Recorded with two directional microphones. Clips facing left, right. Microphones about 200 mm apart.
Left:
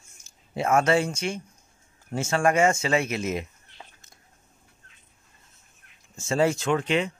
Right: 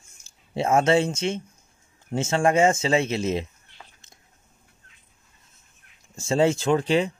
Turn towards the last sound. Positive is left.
turn(degrees=-35)  # may be behind; listen again after turning